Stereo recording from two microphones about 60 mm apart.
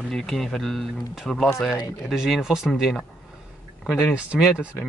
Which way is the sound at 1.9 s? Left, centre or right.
Centre.